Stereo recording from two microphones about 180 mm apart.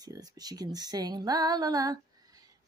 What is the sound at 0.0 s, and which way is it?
Speech, 20° right (ahead or behind).